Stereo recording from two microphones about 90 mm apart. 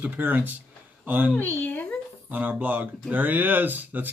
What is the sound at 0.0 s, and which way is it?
Speech, 20° right (ahead or behind).